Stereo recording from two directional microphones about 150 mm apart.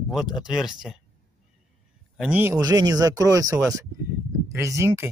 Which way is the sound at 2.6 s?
25° right (ahead or behind).